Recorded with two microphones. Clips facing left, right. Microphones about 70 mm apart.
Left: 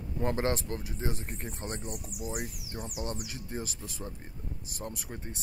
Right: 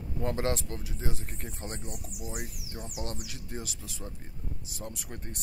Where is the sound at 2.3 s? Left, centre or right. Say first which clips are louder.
Left 2 dB; centre.